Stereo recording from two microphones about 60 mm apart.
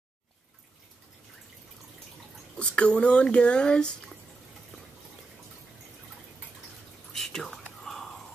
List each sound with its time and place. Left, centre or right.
2.5 s speech: centre
7.1 s whispering: centre
7.8 s a sound: centre